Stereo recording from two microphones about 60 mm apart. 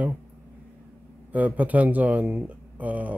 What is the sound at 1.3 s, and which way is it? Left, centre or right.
Speech, right.